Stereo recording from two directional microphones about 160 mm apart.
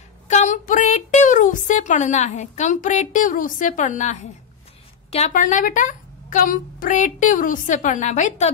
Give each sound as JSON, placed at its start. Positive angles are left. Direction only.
{"t": 0.3, "sound": "a woman's voice", "side_deg": 50}